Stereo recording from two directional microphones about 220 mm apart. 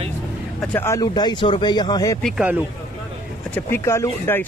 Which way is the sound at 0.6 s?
10° left (ahead or behind).